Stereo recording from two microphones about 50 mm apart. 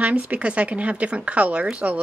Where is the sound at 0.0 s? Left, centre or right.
Right.